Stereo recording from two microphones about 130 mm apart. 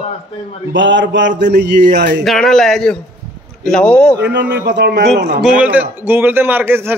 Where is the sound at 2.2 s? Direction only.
Centre (ahead or behind).